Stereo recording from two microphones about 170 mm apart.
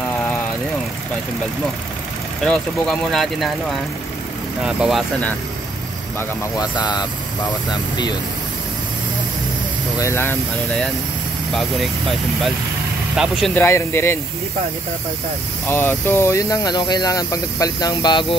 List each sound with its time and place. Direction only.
2.4 s speech: 5° left (ahead or behind)
4.6 s speech: 5° right (ahead or behind)
6.1 s speech: 20° left (ahead or behind)
9.9 s speech: 15° left (ahead or behind)
13.2 s speech: 5° right (ahead or behind)
13.6 s speech: 15° left (ahead or behind)
15.6 s speech: 10° left (ahead or behind)